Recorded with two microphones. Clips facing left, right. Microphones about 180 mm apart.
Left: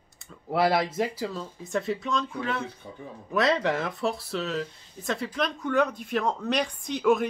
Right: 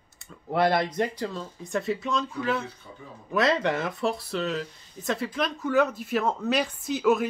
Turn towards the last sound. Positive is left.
turn(degrees=-5)  # may be behind; listen again after turning